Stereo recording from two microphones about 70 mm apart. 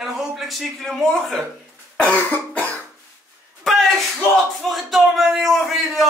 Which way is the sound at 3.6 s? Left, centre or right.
Centre.